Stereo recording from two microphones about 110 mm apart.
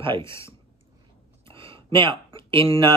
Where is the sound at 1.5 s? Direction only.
55° right (ahead or behind).